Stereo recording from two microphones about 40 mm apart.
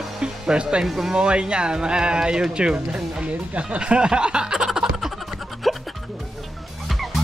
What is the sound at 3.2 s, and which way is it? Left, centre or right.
Snicker, right.